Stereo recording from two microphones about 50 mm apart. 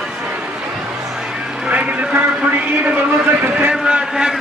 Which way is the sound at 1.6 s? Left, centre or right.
Right.